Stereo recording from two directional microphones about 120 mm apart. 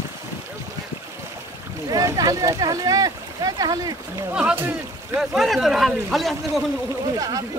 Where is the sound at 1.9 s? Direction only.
30° right (ahead or behind).